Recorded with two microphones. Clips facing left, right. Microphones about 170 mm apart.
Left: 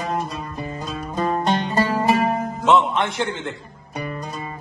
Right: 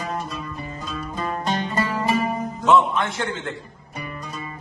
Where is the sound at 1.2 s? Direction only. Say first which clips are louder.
Left 5 dB; 25° left (ahead or behind).